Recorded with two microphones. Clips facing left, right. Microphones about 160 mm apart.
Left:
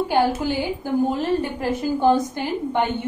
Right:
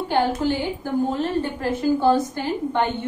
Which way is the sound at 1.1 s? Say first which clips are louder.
Left 1 dB; 15° left (ahead or behind).